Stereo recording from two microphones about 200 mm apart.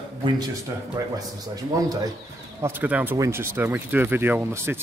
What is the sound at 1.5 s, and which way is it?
Speech, 20° right (ahead or behind).